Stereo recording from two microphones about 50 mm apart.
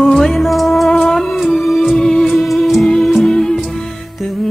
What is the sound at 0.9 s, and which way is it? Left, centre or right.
Music, centre.